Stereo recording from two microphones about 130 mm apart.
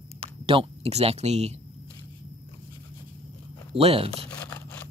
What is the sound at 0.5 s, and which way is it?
Speech, 50° right (ahead or behind).